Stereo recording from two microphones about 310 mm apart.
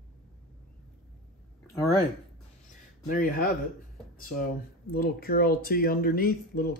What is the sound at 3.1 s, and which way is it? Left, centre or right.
Speech, left.